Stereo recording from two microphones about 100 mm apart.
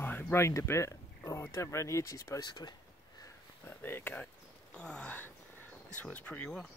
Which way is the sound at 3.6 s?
20° left (ahead or behind).